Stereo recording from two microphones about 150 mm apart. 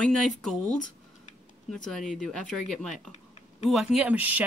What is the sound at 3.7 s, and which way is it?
Speech, centre (ahead or behind).